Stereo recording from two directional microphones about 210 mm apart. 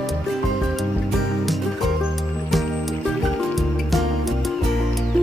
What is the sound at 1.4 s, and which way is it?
Music, centre (ahead or behind).